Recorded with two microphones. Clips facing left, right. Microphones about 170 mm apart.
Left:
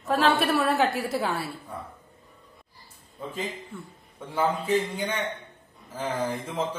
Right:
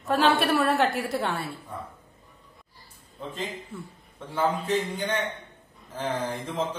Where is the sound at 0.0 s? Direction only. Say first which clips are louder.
Even; centre (ahead or behind).